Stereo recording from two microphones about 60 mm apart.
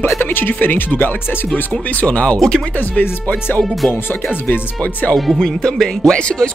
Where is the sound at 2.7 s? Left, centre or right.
Left.